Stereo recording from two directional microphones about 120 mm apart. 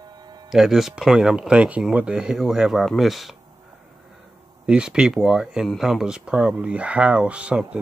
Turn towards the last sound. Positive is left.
turn(degrees=-10)  # may be behind; listen again after turning